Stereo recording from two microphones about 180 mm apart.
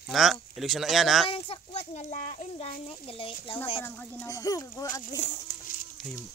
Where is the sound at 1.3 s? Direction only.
35° left (ahead or behind).